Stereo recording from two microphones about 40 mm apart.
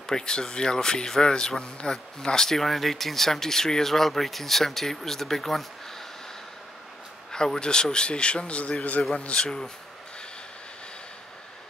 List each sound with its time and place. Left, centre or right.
0.0 s speech: centre
7.2 s speech: centre; by 9.0 s left
9.2 s speech: left